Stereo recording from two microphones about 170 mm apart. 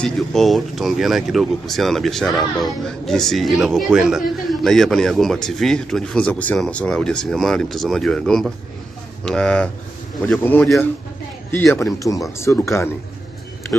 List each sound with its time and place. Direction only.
0.0 s a man's voice: centre (ahead or behind)